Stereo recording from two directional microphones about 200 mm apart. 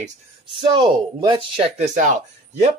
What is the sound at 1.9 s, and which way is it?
Speech, 40° right (ahead or behind).